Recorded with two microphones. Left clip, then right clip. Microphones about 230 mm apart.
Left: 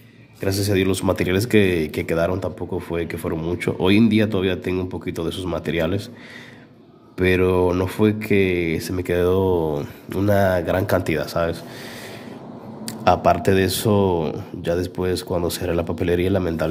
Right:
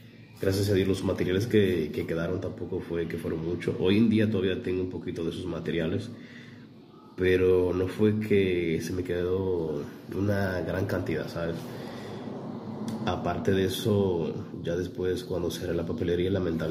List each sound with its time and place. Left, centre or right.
0.4 s speech: left
7.2 s speech: left
12.8 s speech: left